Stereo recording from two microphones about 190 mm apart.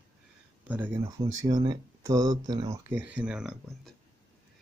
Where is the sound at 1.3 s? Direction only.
20° right (ahead or behind); by 3.9 s 5° right (ahead or behind).